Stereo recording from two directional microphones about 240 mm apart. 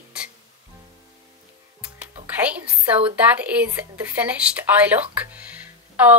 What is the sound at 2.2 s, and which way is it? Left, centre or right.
Music, centre.